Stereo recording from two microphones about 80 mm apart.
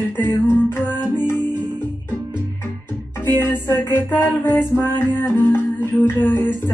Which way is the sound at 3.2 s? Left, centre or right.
Left.